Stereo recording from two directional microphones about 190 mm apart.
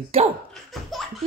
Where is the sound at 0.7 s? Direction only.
Centre (ahead or behind).